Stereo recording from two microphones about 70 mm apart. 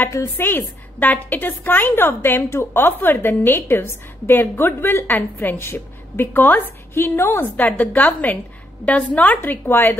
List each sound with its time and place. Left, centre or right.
0.1 s a woman's voice: left
0.5 s a woman's voice: left